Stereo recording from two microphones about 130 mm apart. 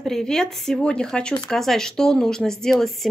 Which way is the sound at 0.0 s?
5° left (ahead or behind).